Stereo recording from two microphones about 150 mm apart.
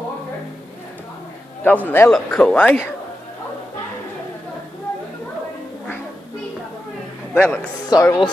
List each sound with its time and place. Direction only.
1.6 s speech: 10° left (ahead or behind)
7.3 s speech: 15° left (ahead or behind)